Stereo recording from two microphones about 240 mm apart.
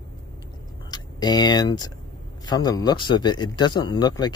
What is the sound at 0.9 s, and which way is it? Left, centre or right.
Speech, centre.